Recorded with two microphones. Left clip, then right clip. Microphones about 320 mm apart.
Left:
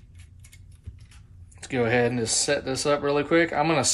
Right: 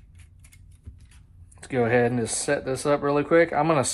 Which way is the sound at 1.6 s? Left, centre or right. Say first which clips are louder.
Right 1 dB; centre.